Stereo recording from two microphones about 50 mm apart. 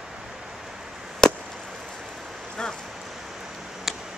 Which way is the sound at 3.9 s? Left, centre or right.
Centre.